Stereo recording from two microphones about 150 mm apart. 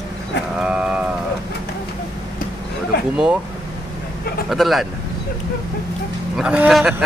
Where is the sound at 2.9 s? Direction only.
90° left.